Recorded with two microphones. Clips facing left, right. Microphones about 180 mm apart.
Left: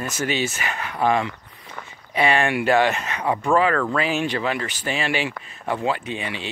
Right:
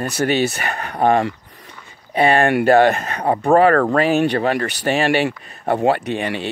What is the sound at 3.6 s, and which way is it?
Speech, 55° right (ahead or behind).